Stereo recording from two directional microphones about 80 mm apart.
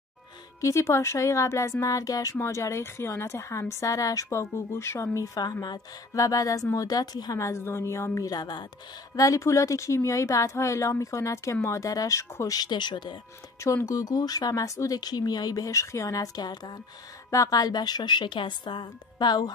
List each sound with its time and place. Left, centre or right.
0.6 s a woman's voice: left
7.3 s a woman's voice: left
8.3 s a woman's voice: left
9.1 s a woman's voice: left
12.5 s speech: left
13.8 s speech: left
17.3 s a woman's voice: left